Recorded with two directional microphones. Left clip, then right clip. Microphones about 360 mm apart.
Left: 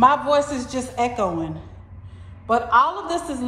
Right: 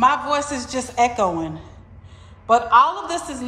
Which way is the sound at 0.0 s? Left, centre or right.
Centre.